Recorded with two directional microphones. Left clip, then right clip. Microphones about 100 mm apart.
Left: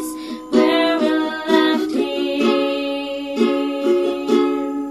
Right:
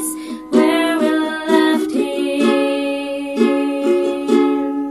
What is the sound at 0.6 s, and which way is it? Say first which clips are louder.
Music: even; 35° left (ahead or behind).